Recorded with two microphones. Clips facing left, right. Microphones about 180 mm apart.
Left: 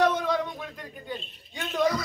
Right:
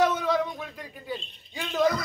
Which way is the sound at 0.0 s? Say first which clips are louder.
Even; centre (ahead or behind).